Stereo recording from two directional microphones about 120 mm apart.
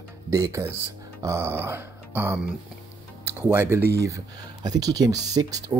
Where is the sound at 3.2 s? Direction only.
20° right (ahead or behind).